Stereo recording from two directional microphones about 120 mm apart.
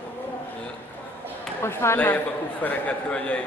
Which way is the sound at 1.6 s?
20° left (ahead or behind).